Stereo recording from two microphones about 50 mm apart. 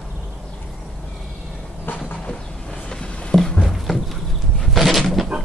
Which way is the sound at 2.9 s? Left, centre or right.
Centre.